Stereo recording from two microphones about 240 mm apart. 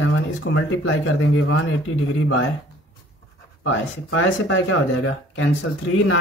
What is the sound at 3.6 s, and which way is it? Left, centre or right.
Speech, left.